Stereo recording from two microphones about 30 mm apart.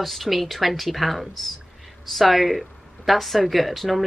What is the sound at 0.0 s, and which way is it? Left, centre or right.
A woman's voice, centre.